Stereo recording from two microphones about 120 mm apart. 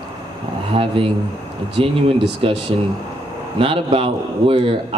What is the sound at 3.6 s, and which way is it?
A man's voice, 50° right (ahead or behind).